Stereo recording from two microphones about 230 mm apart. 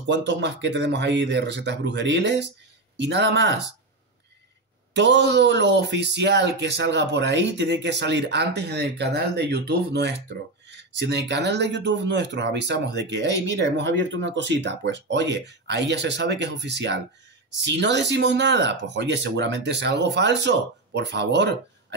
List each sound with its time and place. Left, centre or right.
0.0 s speech: right
4.9 s speech: right